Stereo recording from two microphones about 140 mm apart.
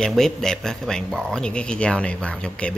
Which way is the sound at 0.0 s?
5° left (ahead or behind).